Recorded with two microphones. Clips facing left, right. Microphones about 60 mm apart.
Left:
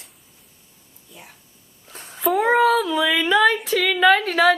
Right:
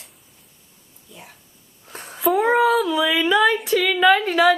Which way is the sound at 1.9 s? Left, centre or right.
Right.